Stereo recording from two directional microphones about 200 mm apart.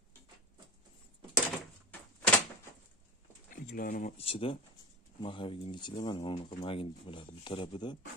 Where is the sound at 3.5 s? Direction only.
45° left (ahead or behind); by 8.0 s 25° left (ahead or behind).